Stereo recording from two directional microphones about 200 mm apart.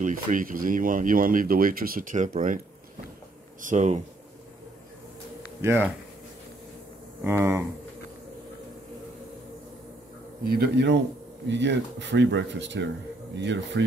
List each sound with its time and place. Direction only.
0.0 s speech: 40° right (ahead or behind)
3.6 s speech: 35° right (ahead or behind)
5.6 s speech: 10° right (ahead or behind)
7.2 s speech: 10° right (ahead or behind)
10.4 s speech: 50° right (ahead or behind)